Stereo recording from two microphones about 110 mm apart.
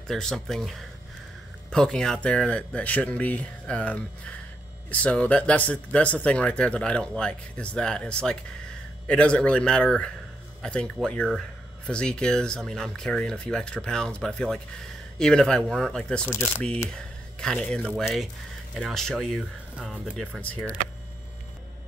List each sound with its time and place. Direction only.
0.1 s speech: 5° left (ahead or behind)
16.3 s speech: 25° left (ahead or behind)
16.9 s speech: 5° left (ahead or behind)